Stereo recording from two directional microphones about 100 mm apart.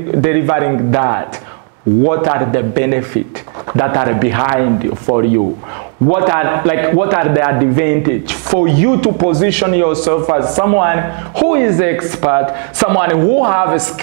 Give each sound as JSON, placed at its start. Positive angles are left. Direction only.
{"t": 0.2, "sound": "a man's voice", "side_deg": -20}